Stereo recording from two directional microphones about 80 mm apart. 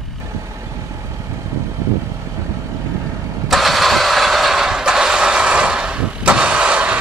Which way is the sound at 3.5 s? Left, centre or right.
Centre.